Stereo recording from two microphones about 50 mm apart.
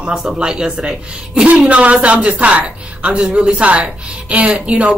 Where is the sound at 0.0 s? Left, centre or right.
Centre.